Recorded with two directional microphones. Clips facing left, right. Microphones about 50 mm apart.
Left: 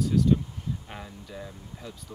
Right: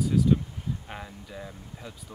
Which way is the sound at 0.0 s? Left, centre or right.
Centre.